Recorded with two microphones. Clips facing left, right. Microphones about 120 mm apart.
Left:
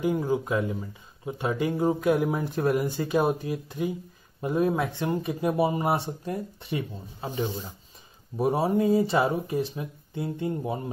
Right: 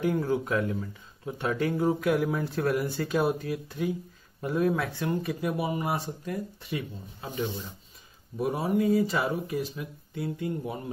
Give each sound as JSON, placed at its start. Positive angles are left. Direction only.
{"t": 0.0, "sound": "speech", "side_deg": 15}